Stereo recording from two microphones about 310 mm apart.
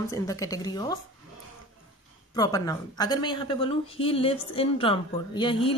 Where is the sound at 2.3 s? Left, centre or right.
Centre.